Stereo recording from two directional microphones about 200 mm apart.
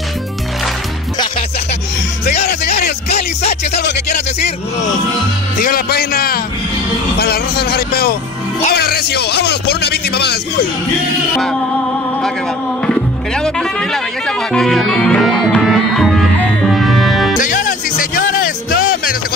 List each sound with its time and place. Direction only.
5.6 s speech: 45° left (ahead or behind)
12.8 s music: 5° left (ahead or behind)
17.4 s music: 40° left (ahead or behind)